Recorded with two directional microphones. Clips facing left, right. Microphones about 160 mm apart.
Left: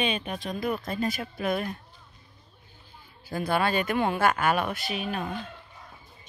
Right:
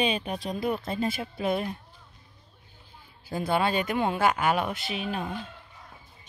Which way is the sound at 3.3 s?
20° right (ahead or behind).